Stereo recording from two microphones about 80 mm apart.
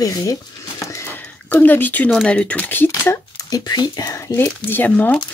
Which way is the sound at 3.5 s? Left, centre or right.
Left.